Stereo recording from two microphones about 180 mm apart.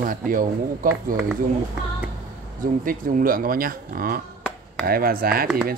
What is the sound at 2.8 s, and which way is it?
Speech, 55° right (ahead or behind).